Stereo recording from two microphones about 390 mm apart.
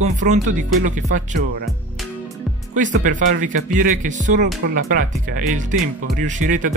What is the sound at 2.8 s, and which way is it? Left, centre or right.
Speech, centre.